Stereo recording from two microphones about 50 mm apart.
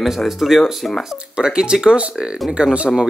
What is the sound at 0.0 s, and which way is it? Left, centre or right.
Speech, centre.